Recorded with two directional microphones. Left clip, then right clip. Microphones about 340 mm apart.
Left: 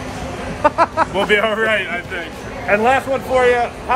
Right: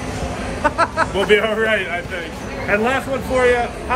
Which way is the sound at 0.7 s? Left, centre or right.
Centre.